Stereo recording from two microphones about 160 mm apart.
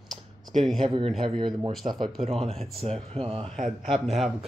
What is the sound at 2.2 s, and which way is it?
Speech, 40° right (ahead or behind).